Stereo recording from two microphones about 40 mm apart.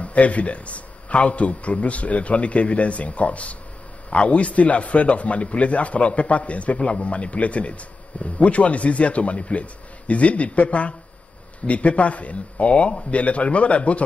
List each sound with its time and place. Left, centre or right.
0.0 s a man's voice: left